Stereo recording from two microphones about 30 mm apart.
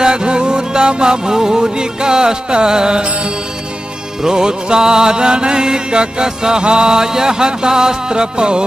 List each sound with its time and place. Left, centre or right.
0.0 s music: right